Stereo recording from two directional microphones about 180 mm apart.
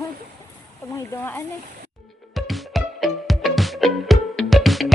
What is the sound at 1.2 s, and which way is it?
Speech, 10° left (ahead or behind).